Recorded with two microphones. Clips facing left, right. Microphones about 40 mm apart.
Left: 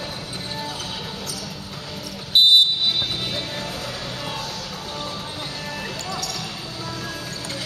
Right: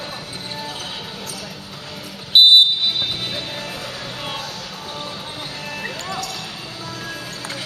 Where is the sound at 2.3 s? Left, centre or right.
Right.